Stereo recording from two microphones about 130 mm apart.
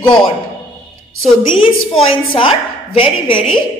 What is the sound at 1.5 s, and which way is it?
A woman's voice, 40° left (ahead or behind).